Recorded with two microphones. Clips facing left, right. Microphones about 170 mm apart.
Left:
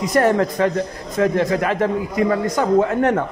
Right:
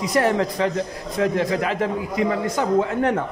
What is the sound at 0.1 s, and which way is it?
A man's voice, 50° left (ahead or behind).